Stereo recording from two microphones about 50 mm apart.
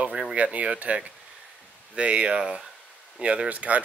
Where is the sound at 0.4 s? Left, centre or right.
Right.